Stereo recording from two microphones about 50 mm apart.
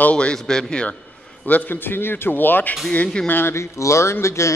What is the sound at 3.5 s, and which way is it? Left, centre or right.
Speech, left.